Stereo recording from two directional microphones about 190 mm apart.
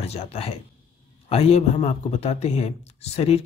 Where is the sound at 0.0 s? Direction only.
35° left (ahead or behind).